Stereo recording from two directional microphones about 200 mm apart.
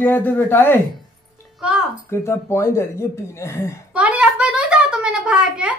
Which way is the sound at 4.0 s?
5° right (ahead or behind).